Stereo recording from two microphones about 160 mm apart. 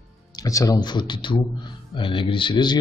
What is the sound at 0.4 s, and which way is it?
A man's voice, 20° left (ahead or behind).